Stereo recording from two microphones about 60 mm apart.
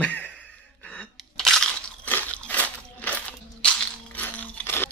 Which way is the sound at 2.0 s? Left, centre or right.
Left.